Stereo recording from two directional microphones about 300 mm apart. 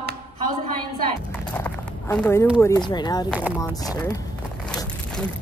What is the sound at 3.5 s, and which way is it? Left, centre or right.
Speech, centre.